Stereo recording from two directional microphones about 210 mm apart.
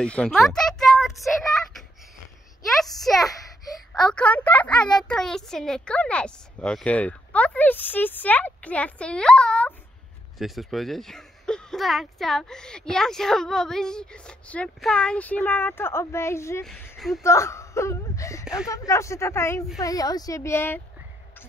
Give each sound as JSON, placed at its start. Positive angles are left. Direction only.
{"t": 0.0, "sound": "speech", "side_deg": 5}
{"t": 1.2, "sound": "child singing", "side_deg": 0}
{"t": 2.6, "sound": "a woman's voice", "side_deg": 0}
{"t": 17.2, "sound": "speech", "side_deg": 15}